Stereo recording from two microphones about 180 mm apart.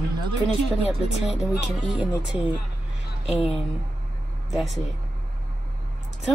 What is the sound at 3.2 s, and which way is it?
Speech, 35° left (ahead or behind).